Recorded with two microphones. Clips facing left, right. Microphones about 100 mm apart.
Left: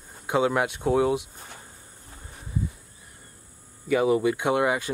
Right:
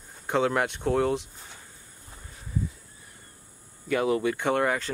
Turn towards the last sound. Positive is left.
turn(degrees=10)  # may be behind; listen again after turning